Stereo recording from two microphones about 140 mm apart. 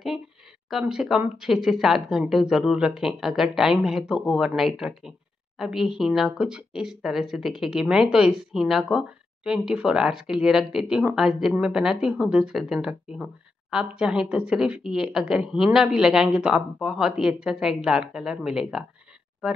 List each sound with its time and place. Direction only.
0.7 s speech: 5° right (ahead or behind)